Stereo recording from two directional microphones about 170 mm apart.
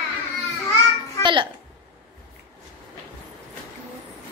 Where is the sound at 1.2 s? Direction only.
30° right (ahead or behind).